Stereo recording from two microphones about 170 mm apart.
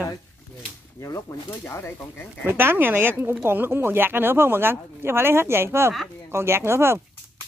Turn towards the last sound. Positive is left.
turn(degrees=-15)  # may be behind; listen again after turning